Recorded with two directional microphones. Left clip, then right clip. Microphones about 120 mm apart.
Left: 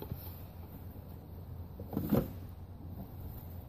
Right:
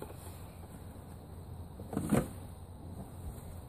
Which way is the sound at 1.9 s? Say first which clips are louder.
Right 1 dB; 25° left (ahead or behind).